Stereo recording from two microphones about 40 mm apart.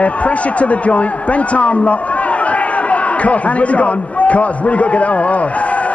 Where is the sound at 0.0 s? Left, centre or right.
Left.